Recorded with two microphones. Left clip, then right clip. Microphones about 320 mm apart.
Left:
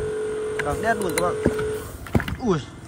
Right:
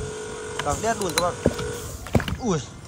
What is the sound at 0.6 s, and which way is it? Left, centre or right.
Speech, centre.